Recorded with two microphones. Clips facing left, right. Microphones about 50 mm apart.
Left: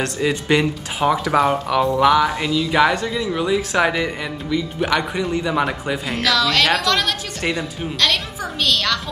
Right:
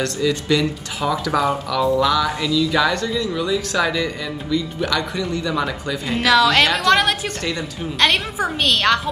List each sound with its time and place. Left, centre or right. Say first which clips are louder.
0.0 s speech: even; left
6.1 s a woman's voice: right 4 dB; right